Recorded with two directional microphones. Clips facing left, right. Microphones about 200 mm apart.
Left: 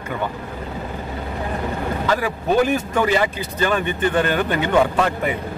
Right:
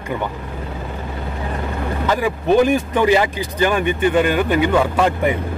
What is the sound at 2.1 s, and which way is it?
Speech, 15° right (ahead or behind).